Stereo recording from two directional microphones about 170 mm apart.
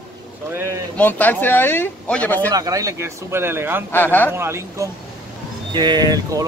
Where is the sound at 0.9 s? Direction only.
10° left (ahead or behind).